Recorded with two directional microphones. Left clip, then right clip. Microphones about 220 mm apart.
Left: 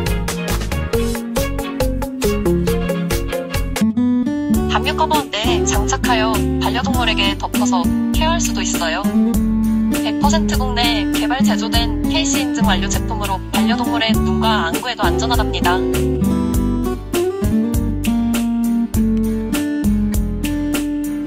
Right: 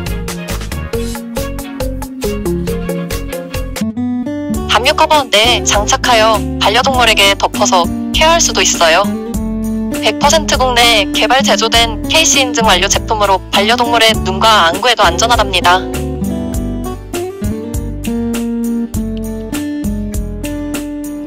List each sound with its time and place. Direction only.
4.6 s music: 40° right (ahead or behind)
10.0 s music: 45° right (ahead or behind)